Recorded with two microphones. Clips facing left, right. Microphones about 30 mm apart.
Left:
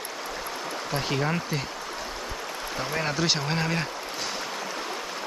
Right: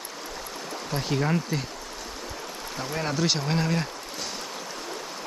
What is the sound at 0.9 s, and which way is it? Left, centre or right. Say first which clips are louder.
Speech: right 1 dB; centre.